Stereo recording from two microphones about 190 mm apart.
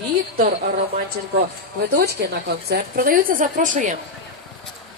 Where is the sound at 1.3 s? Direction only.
55° right (ahead or behind).